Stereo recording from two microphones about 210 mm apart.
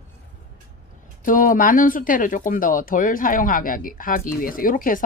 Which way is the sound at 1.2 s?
40° left (ahead or behind).